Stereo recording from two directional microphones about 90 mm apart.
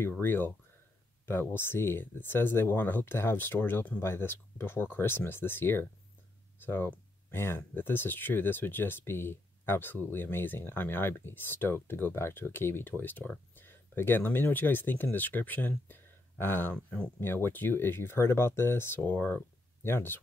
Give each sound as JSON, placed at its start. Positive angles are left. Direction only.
{"t": 0.2, "sound": "speech", "side_deg": 25}
{"t": 16.7, "sound": "speech", "side_deg": 10}
{"t": 17.2, "sound": "speech", "side_deg": 25}